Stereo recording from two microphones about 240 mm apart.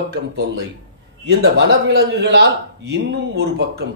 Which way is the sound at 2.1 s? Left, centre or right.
Right.